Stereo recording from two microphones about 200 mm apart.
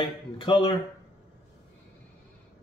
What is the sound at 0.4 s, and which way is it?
Speech, 25° left (ahead or behind).